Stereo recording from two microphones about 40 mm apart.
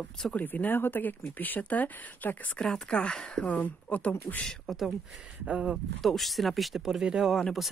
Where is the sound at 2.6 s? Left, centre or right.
Left.